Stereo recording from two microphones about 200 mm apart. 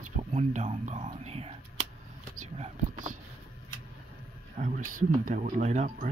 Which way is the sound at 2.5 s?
30° right (ahead or behind).